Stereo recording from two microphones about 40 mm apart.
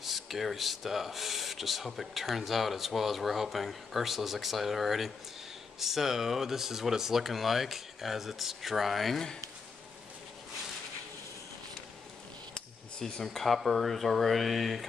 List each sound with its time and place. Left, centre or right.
0.0 s speech: centre
12.5 s a sound: centre
13.2 s speech: centre